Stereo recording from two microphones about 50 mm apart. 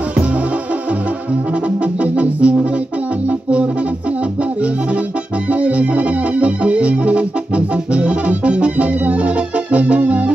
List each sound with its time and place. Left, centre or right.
2.0 s music: right
5.5 s music: right